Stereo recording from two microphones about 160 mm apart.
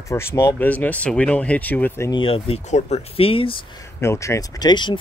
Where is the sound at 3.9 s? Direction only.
15° left (ahead or behind).